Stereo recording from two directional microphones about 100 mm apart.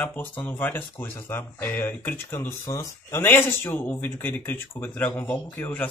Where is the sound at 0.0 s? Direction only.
20° left (ahead or behind).